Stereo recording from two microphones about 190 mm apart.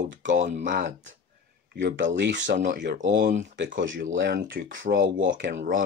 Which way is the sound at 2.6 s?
50° right (ahead or behind).